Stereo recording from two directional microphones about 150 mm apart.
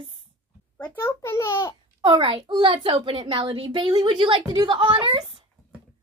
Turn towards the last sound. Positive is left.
turn(degrees=-35)  # may be behind; listen again after turning